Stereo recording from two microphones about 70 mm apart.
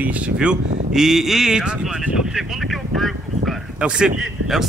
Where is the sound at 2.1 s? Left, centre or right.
Centre.